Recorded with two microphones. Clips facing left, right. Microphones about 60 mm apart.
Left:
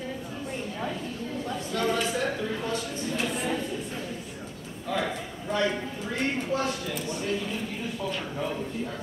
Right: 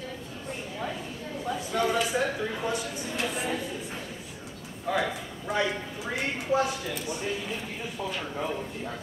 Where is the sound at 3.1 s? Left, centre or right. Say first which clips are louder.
Left 1 dB; centre.